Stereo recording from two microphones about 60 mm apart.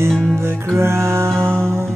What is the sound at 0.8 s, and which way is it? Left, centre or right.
Music, right.